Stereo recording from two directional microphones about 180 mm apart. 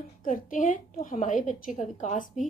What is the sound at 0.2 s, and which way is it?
A woman's voice, 50° left (ahead or behind).